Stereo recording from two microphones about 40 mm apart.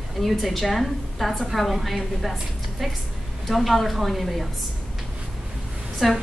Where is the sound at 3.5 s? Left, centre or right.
Centre.